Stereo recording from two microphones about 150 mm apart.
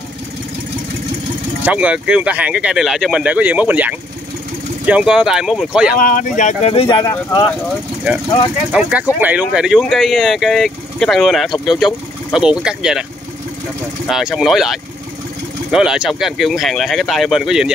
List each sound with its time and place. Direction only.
1.6 s speech: 10° right (ahead or behind)
5.9 s speech: 65° left (ahead or behind)
6.7 s speech: 40° left (ahead or behind)
7.0 s speech: 20° left (ahead or behind)
8.7 s speech: 10° right (ahead or behind)
14.0 s speech: centre (ahead or behind)